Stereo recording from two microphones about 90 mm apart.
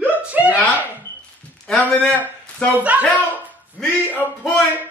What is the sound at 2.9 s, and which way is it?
Speech, 20° right (ahead or behind).